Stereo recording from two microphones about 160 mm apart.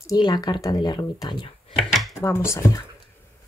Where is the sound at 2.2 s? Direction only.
15° left (ahead or behind).